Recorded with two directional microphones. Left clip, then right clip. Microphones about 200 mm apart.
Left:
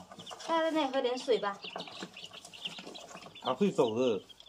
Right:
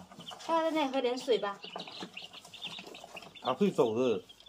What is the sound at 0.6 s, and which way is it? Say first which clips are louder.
Speech: even; 10° right (ahead or behind).